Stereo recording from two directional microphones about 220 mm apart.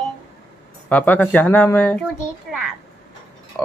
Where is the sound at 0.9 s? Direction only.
5° left (ahead or behind).